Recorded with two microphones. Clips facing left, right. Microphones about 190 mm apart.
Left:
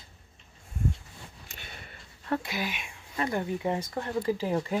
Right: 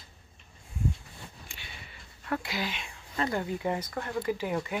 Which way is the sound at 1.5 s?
50° left (ahead or behind).